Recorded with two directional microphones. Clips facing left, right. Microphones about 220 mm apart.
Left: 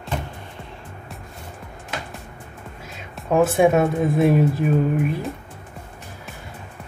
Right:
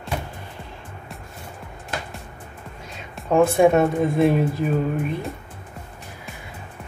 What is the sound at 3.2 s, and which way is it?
Speech, centre (ahead or behind).